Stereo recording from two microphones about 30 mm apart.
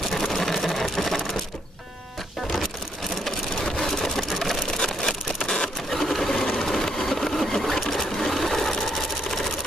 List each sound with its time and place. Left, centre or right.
0.1 s vehicle: centre
3.3 s a sound: centre
5.9 s sewing machine: centre